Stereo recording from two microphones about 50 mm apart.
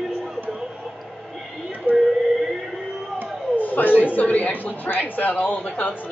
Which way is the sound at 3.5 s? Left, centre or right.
Left.